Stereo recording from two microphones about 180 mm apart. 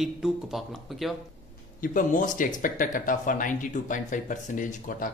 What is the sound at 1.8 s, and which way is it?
Speech, 50° left (ahead or behind).